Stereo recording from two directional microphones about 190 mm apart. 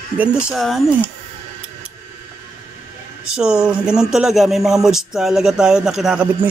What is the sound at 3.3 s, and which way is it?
Speech, 5° right (ahead or behind).